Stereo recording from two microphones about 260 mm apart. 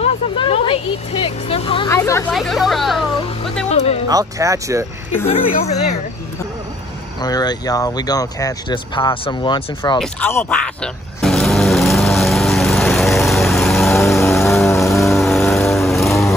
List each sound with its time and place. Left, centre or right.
0.0 s speech: left
2.3 s speech: centre
3.6 s speech: left
4.1 s speech: centre
5.3 s speech: left
7.2 s speech: centre
9.9 s vehicle: centre
15.0 s vehicle: centre